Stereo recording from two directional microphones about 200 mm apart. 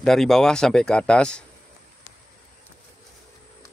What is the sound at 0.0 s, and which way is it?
Speech, centre (ahead or behind).